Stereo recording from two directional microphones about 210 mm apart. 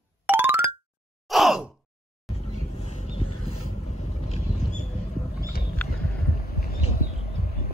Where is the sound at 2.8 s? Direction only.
30° left (ahead or behind).